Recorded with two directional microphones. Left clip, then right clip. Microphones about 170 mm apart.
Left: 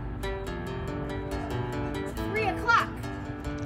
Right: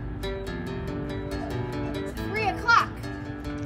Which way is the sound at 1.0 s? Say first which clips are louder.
Right 1 dB; 20° left (ahead or behind).